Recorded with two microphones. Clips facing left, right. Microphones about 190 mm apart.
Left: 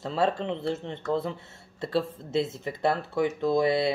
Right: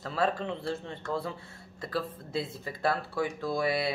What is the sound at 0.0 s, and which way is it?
Speech, 25° left (ahead or behind).